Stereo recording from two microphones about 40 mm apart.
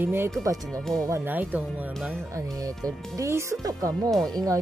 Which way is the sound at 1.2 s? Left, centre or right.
Right.